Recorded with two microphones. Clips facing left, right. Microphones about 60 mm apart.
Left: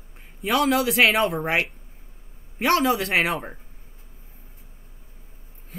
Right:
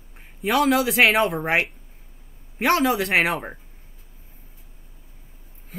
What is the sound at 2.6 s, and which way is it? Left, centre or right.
Speech, centre.